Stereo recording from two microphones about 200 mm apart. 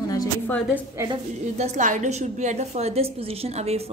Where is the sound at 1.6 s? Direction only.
35° right (ahead or behind).